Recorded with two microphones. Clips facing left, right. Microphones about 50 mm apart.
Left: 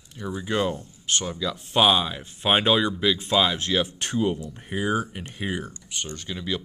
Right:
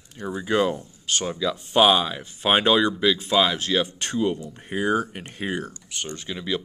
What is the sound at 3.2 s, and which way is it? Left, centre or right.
Speech, centre.